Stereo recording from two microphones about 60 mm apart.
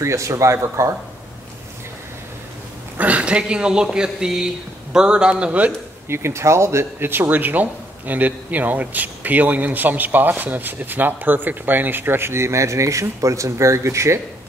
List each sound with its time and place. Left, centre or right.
0.0 s speech: right
3.0 s speech: right
6.0 s speech: right